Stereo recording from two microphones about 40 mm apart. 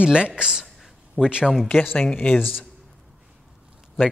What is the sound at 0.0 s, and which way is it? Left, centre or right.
A man's voice, right.